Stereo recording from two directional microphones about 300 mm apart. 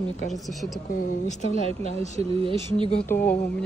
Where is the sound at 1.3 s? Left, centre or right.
Left.